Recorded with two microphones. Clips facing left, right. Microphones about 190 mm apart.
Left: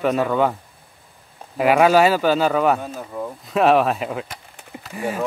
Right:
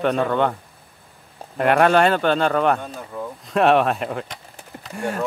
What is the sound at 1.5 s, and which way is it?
Speech, 5° left (ahead or behind).